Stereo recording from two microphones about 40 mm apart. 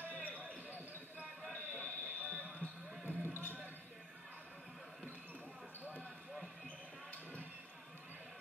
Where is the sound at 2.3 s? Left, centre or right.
Right.